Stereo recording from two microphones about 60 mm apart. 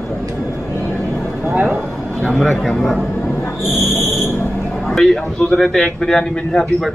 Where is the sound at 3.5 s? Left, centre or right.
Centre.